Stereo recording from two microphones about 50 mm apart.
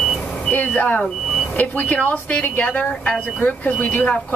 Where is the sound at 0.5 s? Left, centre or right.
Left.